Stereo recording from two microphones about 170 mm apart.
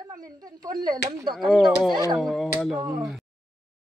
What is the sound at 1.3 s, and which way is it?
Speech, centre (ahead or behind).